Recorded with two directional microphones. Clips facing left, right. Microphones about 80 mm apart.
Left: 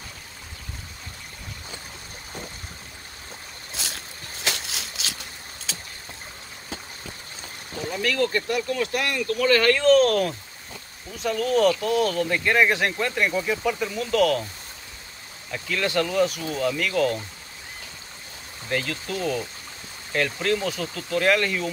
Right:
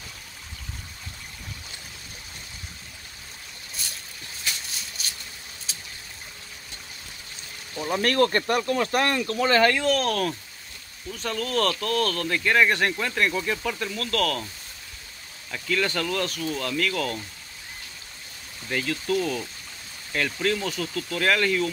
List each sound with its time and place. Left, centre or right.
3.7 s boat: left
4.4 s a sound: left
7.9 s speech: right
9.8 s speech: centre
15.5 s speech: centre
18.7 s speech: centre